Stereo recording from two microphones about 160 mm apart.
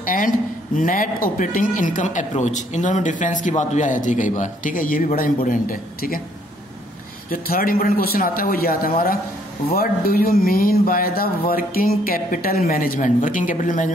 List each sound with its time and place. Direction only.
0.0 s speech: 55° left (ahead or behind)
7.2 s speech: 65° left (ahead or behind)